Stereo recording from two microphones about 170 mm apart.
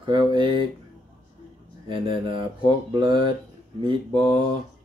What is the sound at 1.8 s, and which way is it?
Speech, 30° right (ahead or behind).